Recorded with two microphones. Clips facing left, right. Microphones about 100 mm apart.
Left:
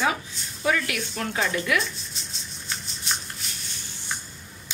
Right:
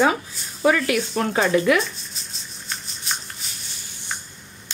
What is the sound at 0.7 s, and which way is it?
A woman's voice, 40° right (ahead or behind).